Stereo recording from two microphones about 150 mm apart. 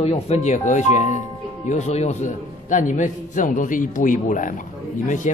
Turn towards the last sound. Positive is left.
turn(degrees=55)  # may be behind; listen again after turning